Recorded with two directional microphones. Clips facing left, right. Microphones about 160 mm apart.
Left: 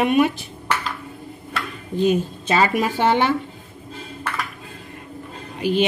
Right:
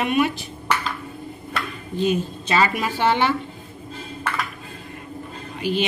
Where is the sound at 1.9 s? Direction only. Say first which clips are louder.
Left 3 dB; 45° left (ahead or behind).